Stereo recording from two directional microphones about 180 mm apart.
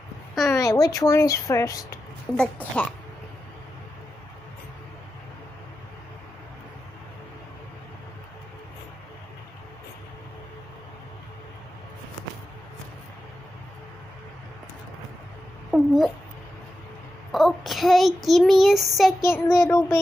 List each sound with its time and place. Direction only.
0.3 s a sound: centre (ahead or behind)
0.6 s a woman's voice: 20° left (ahead or behind)
2.3 s a woman's voice: 5° left (ahead or behind)
15.7 s cat: centre (ahead or behind)
17.3 s child singing: centre (ahead or behind)
19.2 s a child's voice: 15° left (ahead or behind)